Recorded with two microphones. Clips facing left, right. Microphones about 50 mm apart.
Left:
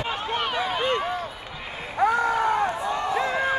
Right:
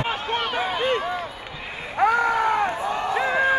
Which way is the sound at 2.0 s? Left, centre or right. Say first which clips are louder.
Right 2 dB; right.